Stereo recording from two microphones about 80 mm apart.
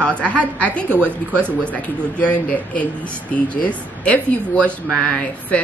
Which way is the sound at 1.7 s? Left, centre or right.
Centre.